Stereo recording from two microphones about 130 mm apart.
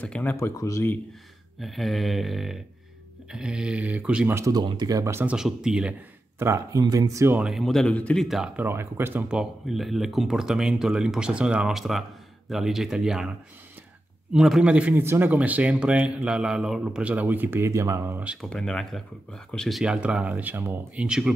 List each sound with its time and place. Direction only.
0.0 s speech: 10° left (ahead or behind)
1.6 s speech: centre (ahead or behind)
4.4 s speech: 30° right (ahead or behind)
5.3 s speech: 5° right (ahead or behind)
6.4 s speech: 25° right (ahead or behind)
7.3 s speech: 5° right (ahead or behind)
8.5 s speech: 15° right (ahead or behind)
9.4 s speech: centre (ahead or behind)
14.3 s speech: 5° right (ahead or behind)
18.5 s speech: 5° left (ahead or behind)